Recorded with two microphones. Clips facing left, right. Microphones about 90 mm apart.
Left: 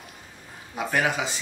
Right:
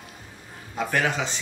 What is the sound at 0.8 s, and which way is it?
Speech, 10° left (ahead or behind).